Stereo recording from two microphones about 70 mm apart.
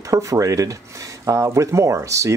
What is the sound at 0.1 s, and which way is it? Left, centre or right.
Speech, right.